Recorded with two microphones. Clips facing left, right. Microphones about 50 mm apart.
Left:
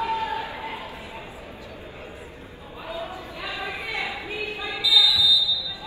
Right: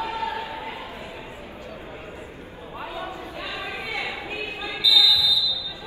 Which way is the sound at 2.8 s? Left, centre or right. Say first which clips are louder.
Even; right.